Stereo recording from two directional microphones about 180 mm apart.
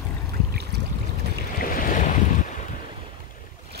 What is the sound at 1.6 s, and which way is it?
Waves, 55° left (ahead or behind).